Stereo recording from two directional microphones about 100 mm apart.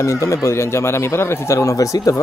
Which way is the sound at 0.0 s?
30° left (ahead or behind).